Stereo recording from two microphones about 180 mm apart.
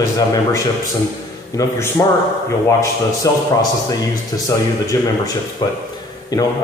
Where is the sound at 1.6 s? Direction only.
20° left (ahead or behind).